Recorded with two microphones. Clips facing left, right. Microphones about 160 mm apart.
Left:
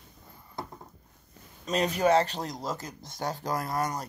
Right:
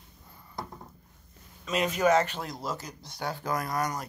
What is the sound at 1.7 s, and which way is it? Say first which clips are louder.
Speech: even; 35° left (ahead or behind).